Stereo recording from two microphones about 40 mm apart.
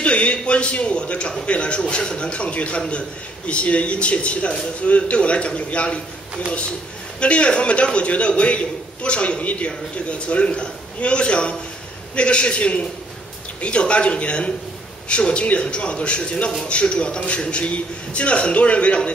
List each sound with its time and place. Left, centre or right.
0.0 s a man's voice: left
7.2 s a man's voice: left